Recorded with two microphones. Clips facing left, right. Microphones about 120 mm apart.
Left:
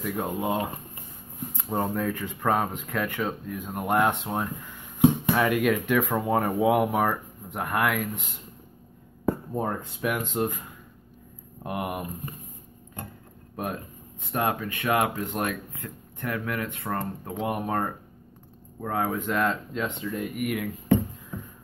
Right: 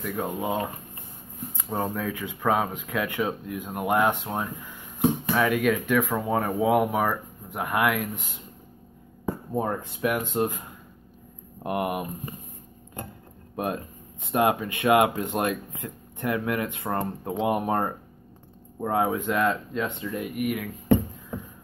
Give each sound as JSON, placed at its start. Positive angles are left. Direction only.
{"t": 0.0, "sound": "speech", "side_deg": 0}
{"t": 1.6, "sound": "speech", "side_deg": 0}
{"t": 9.5, "sound": "speech", "side_deg": -5}
{"t": 11.6, "sound": "speech", "side_deg": -5}
{"t": 14.2, "sound": "speech", "side_deg": -15}